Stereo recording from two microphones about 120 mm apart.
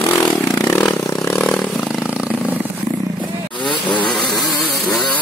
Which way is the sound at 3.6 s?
40° left (ahead or behind).